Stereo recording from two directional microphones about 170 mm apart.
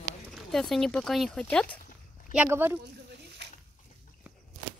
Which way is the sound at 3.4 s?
90° right.